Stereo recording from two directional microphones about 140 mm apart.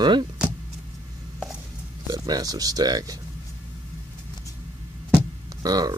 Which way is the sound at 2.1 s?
30° right (ahead or behind).